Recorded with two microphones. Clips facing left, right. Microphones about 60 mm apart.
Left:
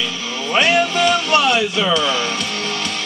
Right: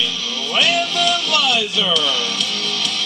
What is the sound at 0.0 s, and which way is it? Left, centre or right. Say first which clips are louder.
Music: left 1 dB; left.